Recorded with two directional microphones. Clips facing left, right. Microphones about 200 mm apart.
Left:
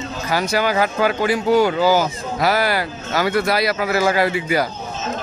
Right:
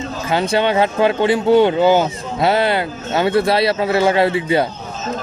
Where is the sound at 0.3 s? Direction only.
25° right (ahead or behind).